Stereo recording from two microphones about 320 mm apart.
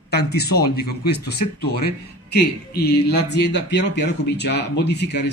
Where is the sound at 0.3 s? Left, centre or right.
Left.